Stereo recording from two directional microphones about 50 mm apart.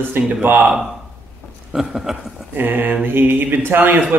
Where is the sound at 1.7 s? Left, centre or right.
Centre.